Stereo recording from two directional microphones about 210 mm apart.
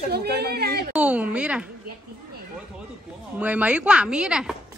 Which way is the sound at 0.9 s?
5° right (ahead or behind).